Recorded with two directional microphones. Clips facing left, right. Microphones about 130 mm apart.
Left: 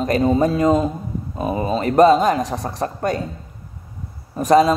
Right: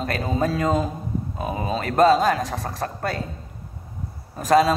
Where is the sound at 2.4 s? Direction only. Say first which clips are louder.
Left 4 dB; 35° left (ahead or behind).